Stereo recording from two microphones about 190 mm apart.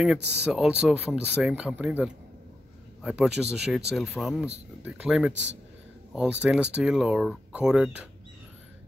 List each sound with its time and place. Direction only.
0.2 s speech: 65° right (ahead or behind)
0.5 s speech: 5° right (ahead or behind)